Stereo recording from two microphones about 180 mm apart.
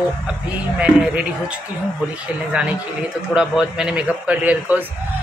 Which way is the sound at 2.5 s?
5° right (ahead or behind).